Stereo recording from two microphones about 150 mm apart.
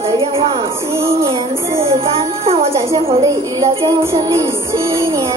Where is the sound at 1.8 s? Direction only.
40° right (ahead or behind).